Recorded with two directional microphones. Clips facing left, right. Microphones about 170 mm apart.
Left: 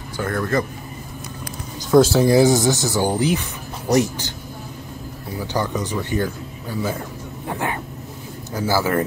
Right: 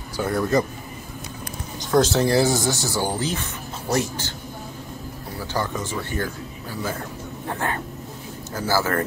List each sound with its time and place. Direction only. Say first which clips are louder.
0.2 s speech: right 1 dB; 10° right (ahead or behind)
1.9 s speech: left 5 dB; 10° left (ahead or behind)
5.4 s speech: left 3 dB; 15° left (ahead or behind)
7.4 s speech: left 2 dB; 15° left (ahead or behind)